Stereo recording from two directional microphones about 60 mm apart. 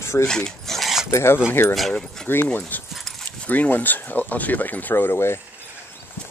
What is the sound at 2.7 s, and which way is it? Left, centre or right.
Speech, left.